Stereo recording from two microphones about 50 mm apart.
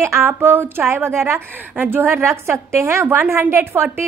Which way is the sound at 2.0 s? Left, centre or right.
Right.